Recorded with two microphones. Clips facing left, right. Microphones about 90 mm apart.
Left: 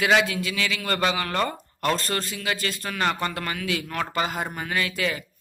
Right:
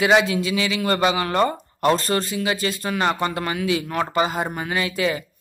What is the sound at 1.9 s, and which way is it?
Speech, centre (ahead or behind).